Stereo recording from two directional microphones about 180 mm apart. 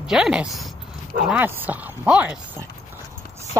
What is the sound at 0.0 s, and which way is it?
Speech, 5° right (ahead or behind).